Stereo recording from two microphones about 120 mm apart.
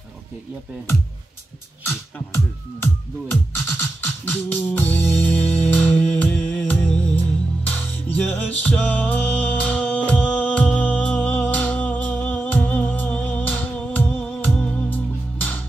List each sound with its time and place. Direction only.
1.8 s speech: 20° left (ahead or behind)
3.7 s music: 15° left (ahead or behind)